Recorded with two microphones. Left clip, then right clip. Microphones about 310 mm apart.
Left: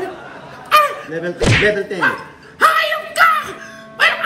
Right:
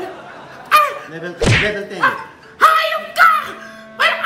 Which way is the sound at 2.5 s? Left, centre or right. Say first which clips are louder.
Right 1 dB; centre.